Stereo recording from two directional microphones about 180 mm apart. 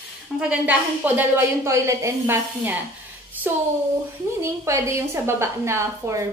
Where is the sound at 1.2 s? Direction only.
15° right (ahead or behind).